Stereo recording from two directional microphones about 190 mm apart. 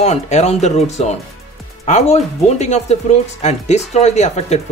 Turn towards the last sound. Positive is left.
turn(degrees=35)  # may be behind; listen again after turning